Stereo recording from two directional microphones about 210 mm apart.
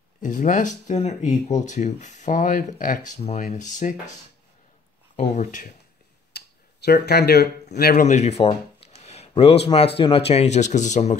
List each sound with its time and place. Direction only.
0.2 s speech: 35° left (ahead or behind)
5.1 s speech: 35° left (ahead or behind)
6.3 s a sound: 50° left (ahead or behind)
7.7 s speech: 45° left (ahead or behind)